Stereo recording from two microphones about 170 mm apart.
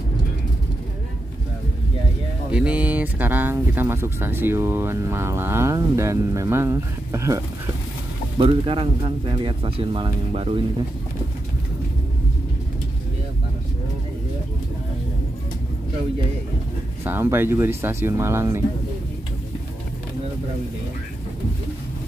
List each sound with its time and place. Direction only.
2.5 s speech: 5° right (ahead or behind)
8.4 s speech: 35° right (ahead or behind)
17.0 s speech: 15° right (ahead or behind)